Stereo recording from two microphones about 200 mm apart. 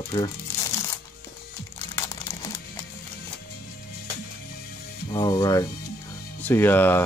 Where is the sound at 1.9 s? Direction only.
15° left (ahead or behind).